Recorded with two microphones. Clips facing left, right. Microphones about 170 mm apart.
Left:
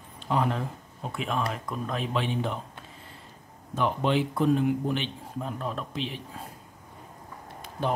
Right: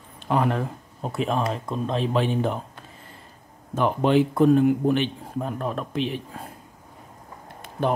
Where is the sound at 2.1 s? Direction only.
45° right (ahead or behind).